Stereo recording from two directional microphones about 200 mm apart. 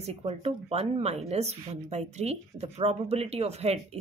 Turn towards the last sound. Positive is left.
turn(degrees=-30)  # may be behind; listen again after turning